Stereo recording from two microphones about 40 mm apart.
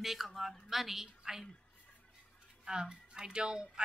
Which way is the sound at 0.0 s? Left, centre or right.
Centre.